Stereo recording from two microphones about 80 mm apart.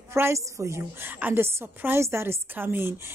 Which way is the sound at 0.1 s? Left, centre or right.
Right.